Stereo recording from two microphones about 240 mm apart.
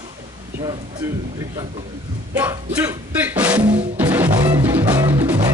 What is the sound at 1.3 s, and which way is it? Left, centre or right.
Speech, centre.